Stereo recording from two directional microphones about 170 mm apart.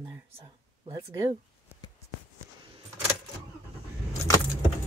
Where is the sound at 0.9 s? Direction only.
25° right (ahead or behind).